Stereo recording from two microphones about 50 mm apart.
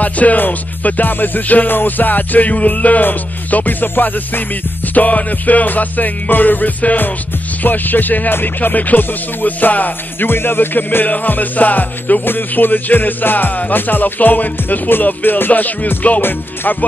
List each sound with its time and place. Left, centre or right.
0.0 s music: left
16.2 s music: left